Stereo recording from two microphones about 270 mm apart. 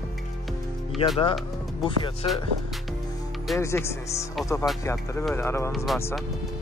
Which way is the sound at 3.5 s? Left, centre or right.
Centre.